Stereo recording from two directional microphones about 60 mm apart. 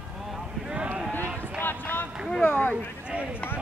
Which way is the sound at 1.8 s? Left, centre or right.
Left.